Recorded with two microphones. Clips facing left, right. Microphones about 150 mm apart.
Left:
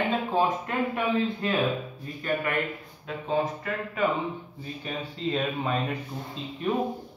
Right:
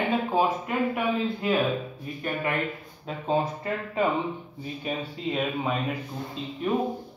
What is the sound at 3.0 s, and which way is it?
Speech, 30° right (ahead or behind).